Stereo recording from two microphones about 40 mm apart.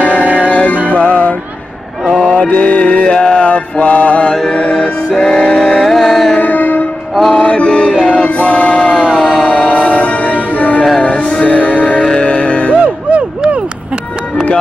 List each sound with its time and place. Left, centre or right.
0.0 s music: left
2.2 s mantra: left
4.4 s music: centre
5.9 s music: centre
6.4 s music: left
7.3 s chant: left
8.1 s music: left